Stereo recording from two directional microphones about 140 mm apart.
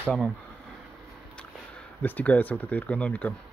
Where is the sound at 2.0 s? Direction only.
10° left (ahead or behind).